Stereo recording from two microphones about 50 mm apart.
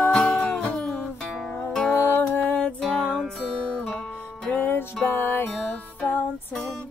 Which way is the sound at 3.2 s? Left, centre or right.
Centre.